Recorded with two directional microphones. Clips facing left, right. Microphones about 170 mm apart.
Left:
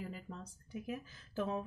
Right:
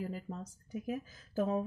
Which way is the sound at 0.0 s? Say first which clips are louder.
Right 5 dB; 40° right (ahead or behind).